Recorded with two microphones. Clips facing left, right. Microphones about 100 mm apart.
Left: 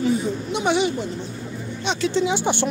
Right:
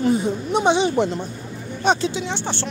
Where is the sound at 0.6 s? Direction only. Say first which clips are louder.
Right 2 dB; 30° right (ahead or behind).